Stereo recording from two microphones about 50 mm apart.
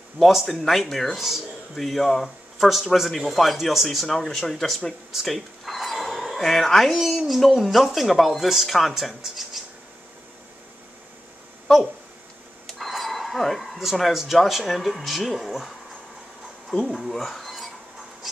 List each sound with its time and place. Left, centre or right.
0.2 s speech: centre
11.6 s a sound: centre
12.6 s speech: centre
17.0 s speech: centre